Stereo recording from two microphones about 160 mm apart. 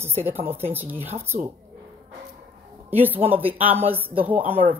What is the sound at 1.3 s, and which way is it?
Speech, 60° right (ahead or behind).